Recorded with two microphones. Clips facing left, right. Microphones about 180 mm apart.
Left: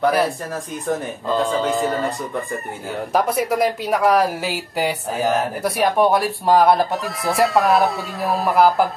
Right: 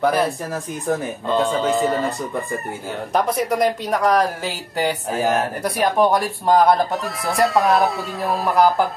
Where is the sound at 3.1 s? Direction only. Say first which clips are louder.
Left 1 dB; 5° left (ahead or behind).